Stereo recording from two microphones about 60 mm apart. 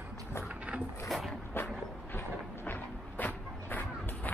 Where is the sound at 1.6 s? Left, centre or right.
Left.